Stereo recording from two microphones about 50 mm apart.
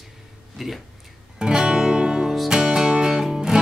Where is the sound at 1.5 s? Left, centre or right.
Centre.